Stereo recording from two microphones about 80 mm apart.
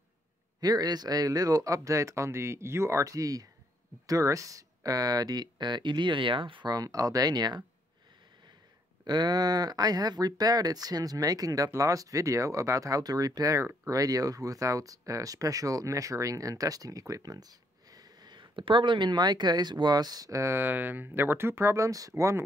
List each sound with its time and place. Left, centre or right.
0.6 s speech: right
6.7 s speech: right
9.0 s speech: right
20.5 s speech: right